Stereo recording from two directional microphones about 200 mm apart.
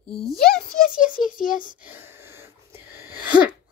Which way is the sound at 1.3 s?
45° left (ahead or behind).